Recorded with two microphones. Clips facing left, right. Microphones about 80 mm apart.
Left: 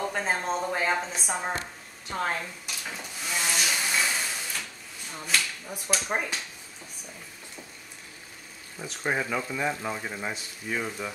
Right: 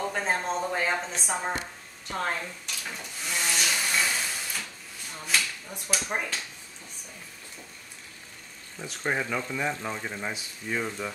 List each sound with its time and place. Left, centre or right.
0.0 s speech: centre
2.0 s a sound: centre
5.1 s speech: centre
8.7 s speech: centre